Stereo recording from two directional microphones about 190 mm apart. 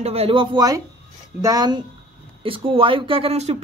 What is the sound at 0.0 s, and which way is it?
Speech, 30° right (ahead or behind).